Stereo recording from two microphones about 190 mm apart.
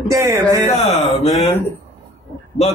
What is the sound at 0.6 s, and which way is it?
Speech, 35° left (ahead or behind).